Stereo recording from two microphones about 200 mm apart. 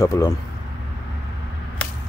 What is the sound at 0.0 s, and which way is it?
Speech, 15° left (ahead or behind).